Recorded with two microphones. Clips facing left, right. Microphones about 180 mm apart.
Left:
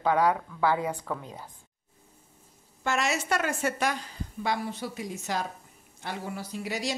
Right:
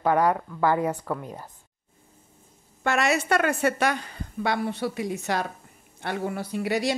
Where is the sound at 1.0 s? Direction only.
10° right (ahead or behind).